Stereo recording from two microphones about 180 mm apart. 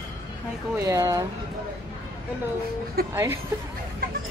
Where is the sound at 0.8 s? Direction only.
20° right (ahead or behind).